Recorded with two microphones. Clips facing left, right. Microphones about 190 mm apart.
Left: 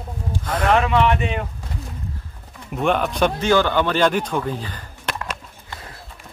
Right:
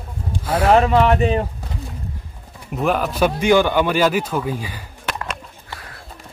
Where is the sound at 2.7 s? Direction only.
Centre (ahead or behind).